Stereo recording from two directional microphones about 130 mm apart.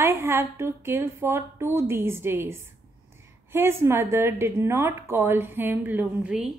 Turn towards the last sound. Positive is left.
turn(degrees=-5)  # may be behind; listen again after turning